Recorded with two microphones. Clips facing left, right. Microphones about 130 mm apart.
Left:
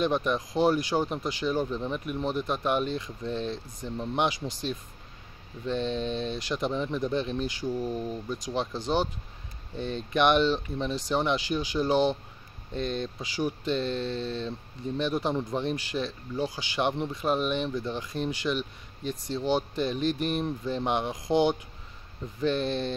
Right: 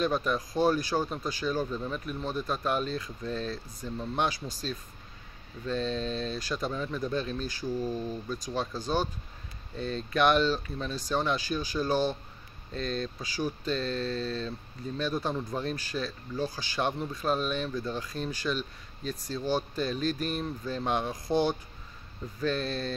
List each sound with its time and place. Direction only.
0.0 s speech: 15° left (ahead or behind)